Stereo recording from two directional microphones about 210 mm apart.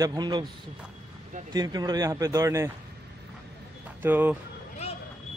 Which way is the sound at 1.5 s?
20° right (ahead or behind).